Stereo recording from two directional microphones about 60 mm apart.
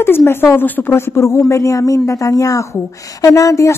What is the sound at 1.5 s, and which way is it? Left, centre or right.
Speech, left.